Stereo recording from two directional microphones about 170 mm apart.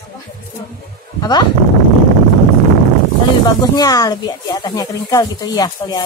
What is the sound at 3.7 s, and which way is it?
Speech, 20° left (ahead or behind).